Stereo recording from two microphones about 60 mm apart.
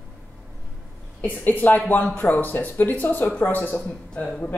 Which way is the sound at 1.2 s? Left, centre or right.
Left.